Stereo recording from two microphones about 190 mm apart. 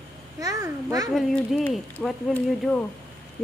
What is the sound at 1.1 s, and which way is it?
Speech, centre (ahead or behind).